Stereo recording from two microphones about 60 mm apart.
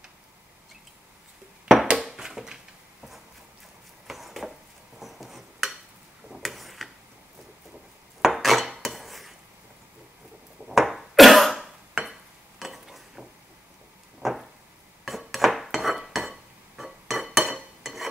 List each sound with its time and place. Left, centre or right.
1.9 s a sound: centre
6.3 s tick-tock: centre
8.2 s dishes: centre
10.7 s cough: centre
11.6 s a sound: centre
15.0 s cutlery: centre